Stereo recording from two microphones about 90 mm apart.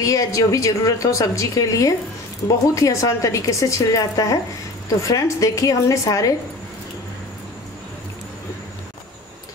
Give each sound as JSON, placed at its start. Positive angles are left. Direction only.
{"t": 0.0, "sound": "a woman's voice", "side_deg": 40}